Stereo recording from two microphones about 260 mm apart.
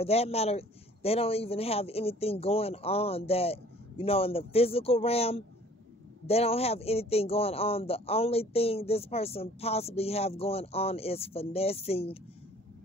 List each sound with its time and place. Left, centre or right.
0.0 s a man's voice: left